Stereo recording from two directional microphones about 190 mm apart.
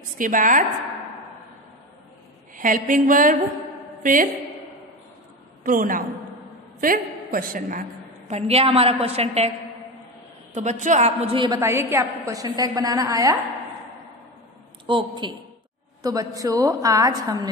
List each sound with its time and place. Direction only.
0.2 s a woman's voice: 45° right (ahead or behind)
2.5 s a woman's voice: 45° right (ahead or behind)
5.6 s a woman's voice: 45° right (ahead or behind)
8.3 s a woman's voice: 35° right (ahead or behind)
10.5 s a woman's voice: 40° right (ahead or behind)
11.4 s a woman's voice: 20° right (ahead or behind)
14.9 s a woman's voice: 25° right (ahead or behind)